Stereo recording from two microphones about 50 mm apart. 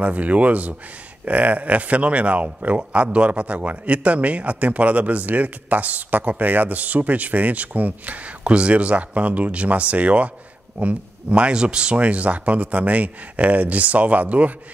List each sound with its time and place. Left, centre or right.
0.0 s a man's voice: right